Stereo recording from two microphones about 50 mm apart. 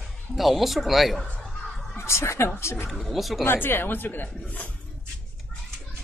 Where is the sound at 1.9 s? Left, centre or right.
Left.